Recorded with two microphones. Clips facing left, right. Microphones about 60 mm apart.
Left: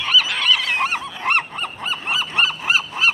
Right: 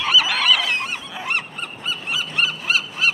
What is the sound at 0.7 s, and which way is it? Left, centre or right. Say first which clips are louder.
Goose: left 5 dB; left.